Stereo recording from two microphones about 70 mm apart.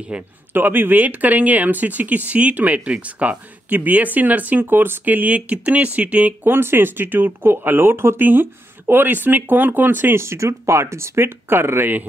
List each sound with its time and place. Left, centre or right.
0.1 s a man's voice: centre
0.5 s speech: right
6.4 s speech: right